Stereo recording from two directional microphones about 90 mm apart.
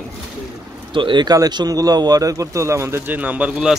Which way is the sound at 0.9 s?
65° right (ahead or behind).